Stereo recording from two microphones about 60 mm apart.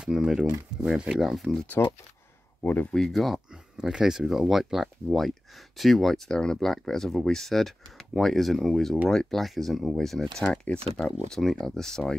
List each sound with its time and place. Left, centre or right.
0.0 s speech: centre
1.8 s speech: left
2.9 s speech: centre
11.3 s speech: centre